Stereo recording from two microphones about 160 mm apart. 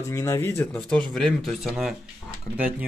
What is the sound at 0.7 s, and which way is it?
Speech, 5° left (ahead or behind).